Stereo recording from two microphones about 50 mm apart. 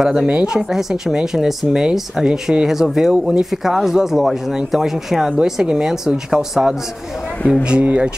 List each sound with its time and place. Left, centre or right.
0.0 s speech: centre
0.3 s speech: right
0.6 s speech: centre
5.4 s speech: centre
7.8 s speech: right